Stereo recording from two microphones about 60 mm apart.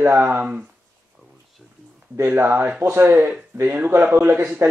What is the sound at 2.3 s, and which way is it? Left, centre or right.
A man's voice, right.